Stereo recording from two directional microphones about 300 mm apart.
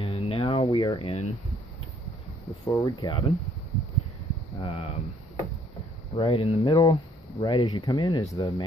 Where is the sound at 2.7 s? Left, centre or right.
Centre.